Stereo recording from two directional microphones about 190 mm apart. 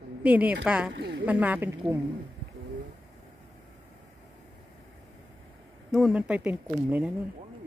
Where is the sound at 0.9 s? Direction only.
65° right (ahead or behind).